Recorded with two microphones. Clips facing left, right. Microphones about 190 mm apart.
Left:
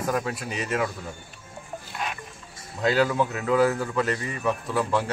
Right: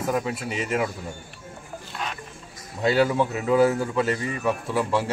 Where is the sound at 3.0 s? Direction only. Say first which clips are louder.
Right 3 dB; 25° right (ahead or behind).